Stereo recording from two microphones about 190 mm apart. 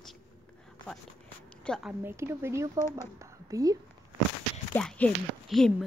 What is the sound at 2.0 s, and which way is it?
A woman's voice, 10° right (ahead or behind).